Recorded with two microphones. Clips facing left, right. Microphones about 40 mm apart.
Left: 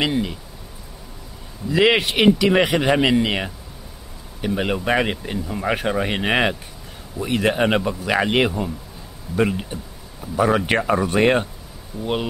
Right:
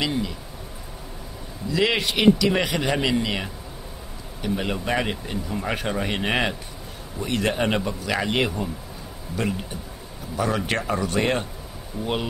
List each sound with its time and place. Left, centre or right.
0.0 s speech: left
1.7 s speech: left
12.0 s speech: centre